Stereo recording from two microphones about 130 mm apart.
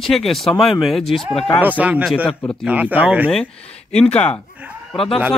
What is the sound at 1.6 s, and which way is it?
Speech, 10° right (ahead or behind).